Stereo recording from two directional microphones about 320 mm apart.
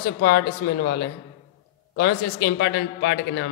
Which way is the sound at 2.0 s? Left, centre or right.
Left.